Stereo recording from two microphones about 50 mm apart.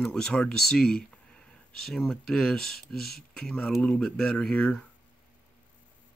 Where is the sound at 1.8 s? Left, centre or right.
Centre.